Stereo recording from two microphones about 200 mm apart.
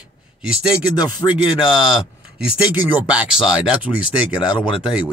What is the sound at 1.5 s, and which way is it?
Speech, 5° right (ahead or behind).